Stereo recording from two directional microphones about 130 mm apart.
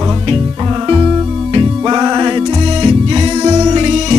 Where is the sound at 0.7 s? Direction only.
40° right (ahead or behind).